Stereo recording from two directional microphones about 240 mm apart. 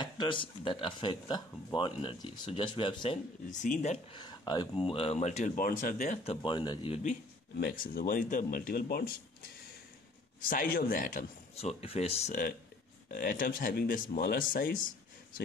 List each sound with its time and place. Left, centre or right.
0.0 s speech: centre
6.4 s speech: centre
7.5 s speech: left
10.4 s speech: left